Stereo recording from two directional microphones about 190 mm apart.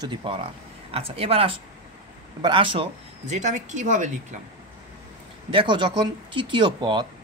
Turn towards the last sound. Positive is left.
turn(degrees=-25)  # may be behind; listen again after turning